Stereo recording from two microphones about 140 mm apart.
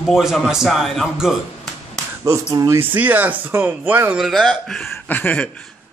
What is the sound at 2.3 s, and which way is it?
Speech, 25° right (ahead or behind).